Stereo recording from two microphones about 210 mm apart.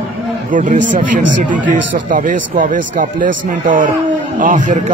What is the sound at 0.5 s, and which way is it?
A man's voice, 40° right (ahead or behind).